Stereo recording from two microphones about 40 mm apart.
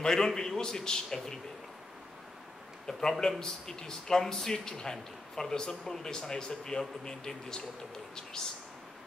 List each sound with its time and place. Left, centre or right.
0.0 s speech: centre
2.9 s speech: centre